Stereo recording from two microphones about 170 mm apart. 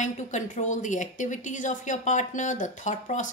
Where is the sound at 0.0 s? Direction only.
45° left (ahead or behind).